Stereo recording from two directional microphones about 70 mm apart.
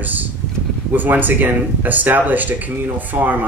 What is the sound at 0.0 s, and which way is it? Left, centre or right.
Vehicle, right.